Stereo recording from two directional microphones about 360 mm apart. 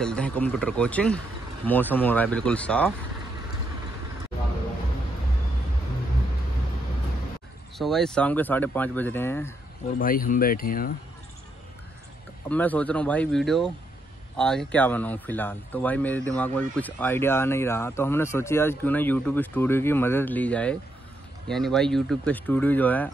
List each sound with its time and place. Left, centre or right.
0.0 s speech: centre
7.7 s speech: centre
9.9 s speech: left
12.4 s speech: centre